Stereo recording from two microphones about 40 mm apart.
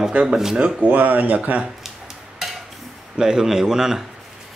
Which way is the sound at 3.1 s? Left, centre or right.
Centre.